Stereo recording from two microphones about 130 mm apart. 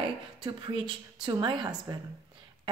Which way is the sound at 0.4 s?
35° right (ahead or behind).